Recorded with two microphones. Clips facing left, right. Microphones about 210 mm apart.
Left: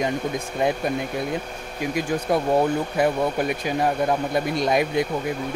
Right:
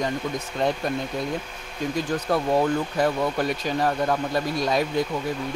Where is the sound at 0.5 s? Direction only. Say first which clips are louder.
Left 2 dB; 10° left (ahead or behind).